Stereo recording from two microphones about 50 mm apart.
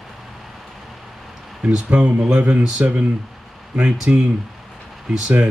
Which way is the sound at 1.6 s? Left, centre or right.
Right.